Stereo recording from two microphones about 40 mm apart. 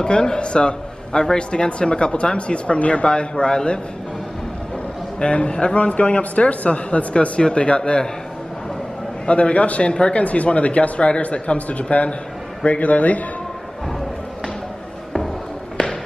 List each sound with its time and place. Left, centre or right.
0.0 s speech: left
5.2 s speech: left
9.2 s speech: left
15.8 s basketball bounce: centre